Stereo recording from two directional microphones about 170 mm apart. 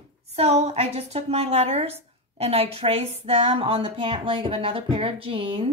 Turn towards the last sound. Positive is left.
turn(degrees=-35)  # may be behind; listen again after turning